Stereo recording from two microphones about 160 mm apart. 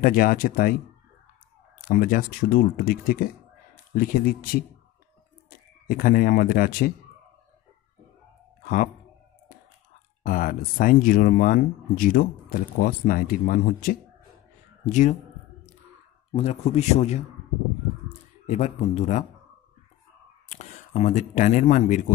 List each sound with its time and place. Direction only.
0.0 s speech: 60° left (ahead or behind)
1.9 s speech: 65° left (ahead or behind)
10.2 s speech: 60° left (ahead or behind)
14.9 s speech: 50° left (ahead or behind)
16.3 s speech: 40° left (ahead or behind)
20.4 s speech: 45° left (ahead or behind)